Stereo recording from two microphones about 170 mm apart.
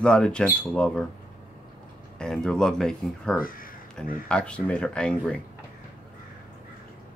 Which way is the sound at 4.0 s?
Centre (ahead or behind).